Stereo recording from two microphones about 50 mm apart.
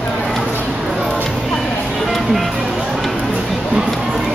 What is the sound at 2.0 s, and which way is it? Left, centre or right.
Music, centre.